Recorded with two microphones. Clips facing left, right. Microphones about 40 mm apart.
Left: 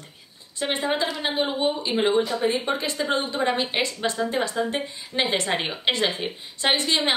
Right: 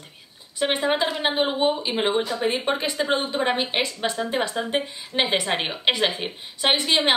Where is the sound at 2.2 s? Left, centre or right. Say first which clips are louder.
Left 1 dB; right.